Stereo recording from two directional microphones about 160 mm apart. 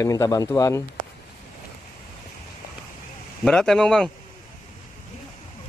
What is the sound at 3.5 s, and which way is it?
Speech, 5° left (ahead or behind).